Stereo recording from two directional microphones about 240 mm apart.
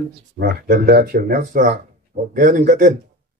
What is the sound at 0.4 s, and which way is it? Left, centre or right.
A man's voice, right.